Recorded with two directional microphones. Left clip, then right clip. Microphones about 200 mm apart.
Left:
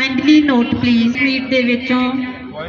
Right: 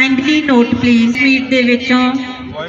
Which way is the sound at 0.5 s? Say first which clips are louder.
Right 4 dB; 35° left (ahead or behind).